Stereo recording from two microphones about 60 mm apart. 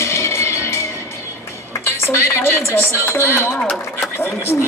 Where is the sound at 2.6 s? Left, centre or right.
Left.